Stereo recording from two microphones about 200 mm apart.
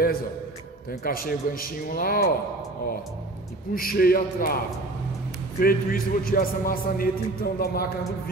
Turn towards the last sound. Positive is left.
turn(degrees=50)  # may be behind; listen again after turning